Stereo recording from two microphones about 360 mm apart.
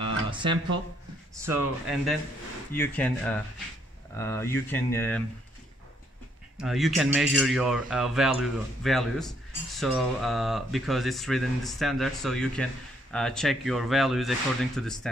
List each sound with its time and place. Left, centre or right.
0.0 s a sound: centre
1.3 s speech: centre
2.7 s speech: centre
6.6 s speech: centre